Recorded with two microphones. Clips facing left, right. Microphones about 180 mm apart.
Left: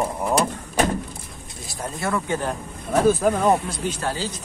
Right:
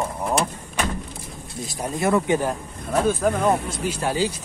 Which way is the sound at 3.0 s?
5° left (ahead or behind).